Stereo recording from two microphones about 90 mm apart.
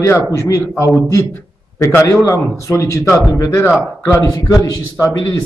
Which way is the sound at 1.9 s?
30° left (ahead or behind).